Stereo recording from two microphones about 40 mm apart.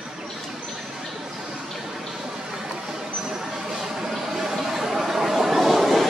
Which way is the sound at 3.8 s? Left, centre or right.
Centre.